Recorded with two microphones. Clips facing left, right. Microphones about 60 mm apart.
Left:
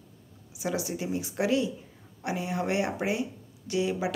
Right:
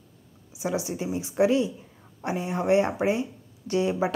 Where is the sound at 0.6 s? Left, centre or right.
Right.